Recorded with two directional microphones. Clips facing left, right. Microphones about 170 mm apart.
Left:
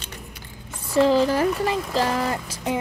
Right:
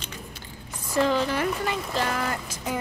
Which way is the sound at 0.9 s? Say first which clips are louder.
Left 5 dB; 30° left (ahead or behind).